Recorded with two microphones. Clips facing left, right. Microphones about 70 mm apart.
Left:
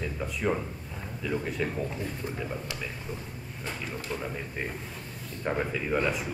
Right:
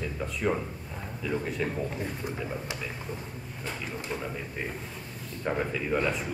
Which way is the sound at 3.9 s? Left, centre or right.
Centre.